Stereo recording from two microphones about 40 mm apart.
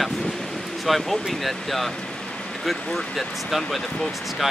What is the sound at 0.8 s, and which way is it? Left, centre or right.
Speech, centre.